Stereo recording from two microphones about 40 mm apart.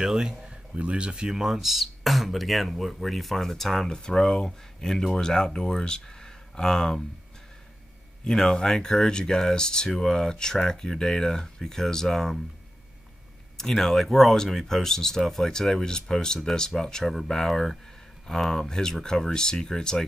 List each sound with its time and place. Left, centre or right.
0.0 s speech: centre
0.5 s speech: right; by 7.0 s centre
8.3 s speech: centre
13.6 s speech: centre